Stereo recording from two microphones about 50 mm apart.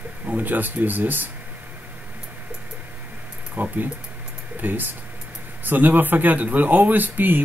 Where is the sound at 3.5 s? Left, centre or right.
Right.